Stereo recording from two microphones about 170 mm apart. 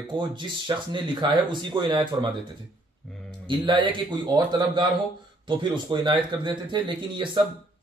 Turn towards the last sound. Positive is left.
turn(degrees=-25)  # may be behind; listen again after turning